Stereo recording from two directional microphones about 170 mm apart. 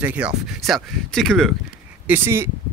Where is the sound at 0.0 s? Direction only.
10° right (ahead or behind).